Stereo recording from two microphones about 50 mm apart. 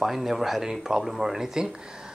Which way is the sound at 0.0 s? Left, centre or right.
Centre.